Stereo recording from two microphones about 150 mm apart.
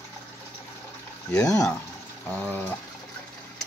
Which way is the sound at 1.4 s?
20° left (ahead or behind).